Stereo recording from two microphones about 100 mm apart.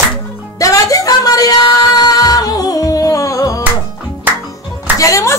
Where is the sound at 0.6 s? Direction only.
35° left (ahead or behind).